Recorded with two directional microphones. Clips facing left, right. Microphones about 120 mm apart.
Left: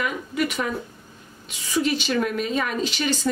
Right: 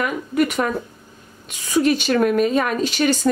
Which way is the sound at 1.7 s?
50° right (ahead or behind).